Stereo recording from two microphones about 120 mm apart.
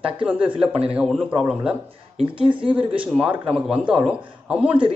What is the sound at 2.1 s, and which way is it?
Speech, 45° right (ahead or behind).